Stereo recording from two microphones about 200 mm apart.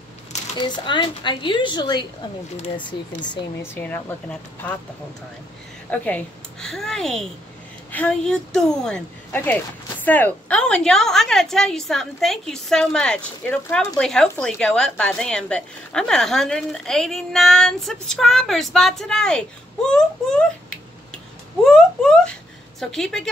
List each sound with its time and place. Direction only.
0.8 s speech: 25° left (ahead or behind)
3.6 s speech: 10° left (ahead or behind)
5.9 s speech: 5° left (ahead or behind)
21.6 s a sound: 5° left (ahead or behind)